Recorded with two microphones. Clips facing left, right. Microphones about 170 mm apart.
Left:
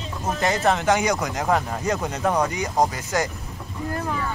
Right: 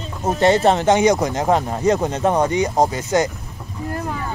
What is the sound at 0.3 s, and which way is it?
Speech, 30° right (ahead or behind).